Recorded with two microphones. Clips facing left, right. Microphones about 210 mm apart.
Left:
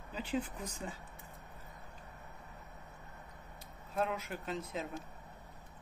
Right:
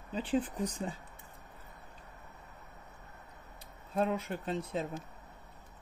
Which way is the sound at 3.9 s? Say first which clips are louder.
Right 4 dB; 30° right (ahead or behind).